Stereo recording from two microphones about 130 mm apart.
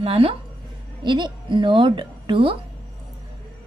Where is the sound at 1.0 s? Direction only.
35° right (ahead or behind).